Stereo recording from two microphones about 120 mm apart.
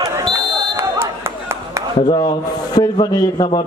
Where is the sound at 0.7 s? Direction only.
20° right (ahead or behind).